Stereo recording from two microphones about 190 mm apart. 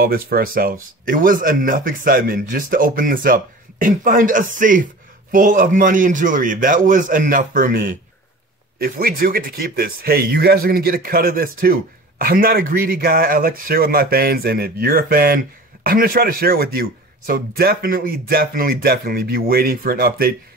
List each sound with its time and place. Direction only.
0.0 s speech: 50° right (ahead or behind)